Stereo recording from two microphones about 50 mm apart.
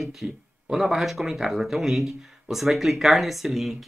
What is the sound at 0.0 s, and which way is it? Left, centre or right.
Speech, centre.